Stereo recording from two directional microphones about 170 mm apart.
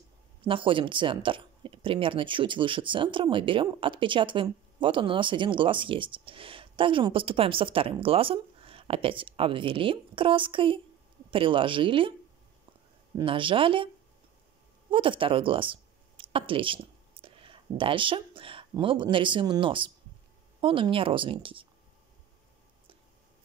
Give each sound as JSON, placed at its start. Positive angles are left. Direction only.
{"t": 0.4, "sound": "speech", "side_deg": -30}
{"t": 13.1, "sound": "speech", "side_deg": -30}
{"t": 14.9, "sound": "speech", "side_deg": -30}